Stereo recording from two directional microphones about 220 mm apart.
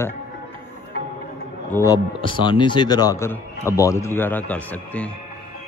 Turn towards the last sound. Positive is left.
turn(degrees=5)  # may be behind; listen again after turning